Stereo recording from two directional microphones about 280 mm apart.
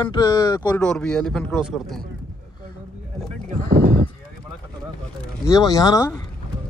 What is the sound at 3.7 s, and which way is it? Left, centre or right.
Horse, right.